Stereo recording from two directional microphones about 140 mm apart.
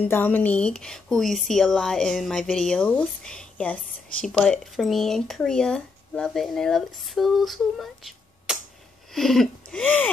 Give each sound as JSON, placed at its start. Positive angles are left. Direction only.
{"t": 0.0, "sound": "speech", "side_deg": 15}